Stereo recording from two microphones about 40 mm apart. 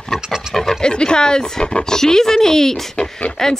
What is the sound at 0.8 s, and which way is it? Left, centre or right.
Speech, left.